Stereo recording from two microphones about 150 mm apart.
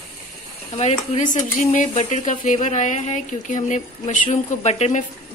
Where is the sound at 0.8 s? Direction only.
50° left (ahead or behind).